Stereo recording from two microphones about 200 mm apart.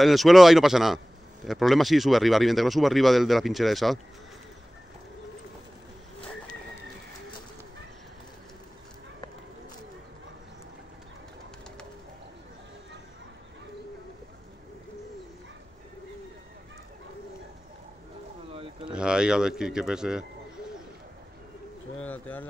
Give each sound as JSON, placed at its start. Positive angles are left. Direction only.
{"t": 0.0, "sound": "a man's voice", "side_deg": 0}
{"t": 18.5, "sound": "a sound", "side_deg": -30}
{"t": 18.9, "sound": "a man's voice", "side_deg": -5}
{"t": 21.9, "sound": "speech", "side_deg": 5}